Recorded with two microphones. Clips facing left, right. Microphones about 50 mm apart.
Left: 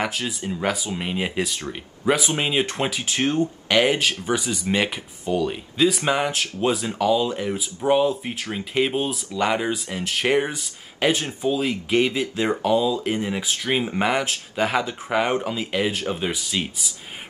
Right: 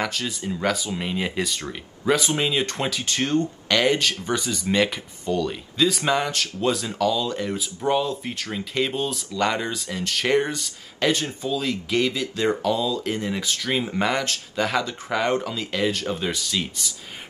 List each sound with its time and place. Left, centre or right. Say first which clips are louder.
0.0 s speech: left 1 dB; centre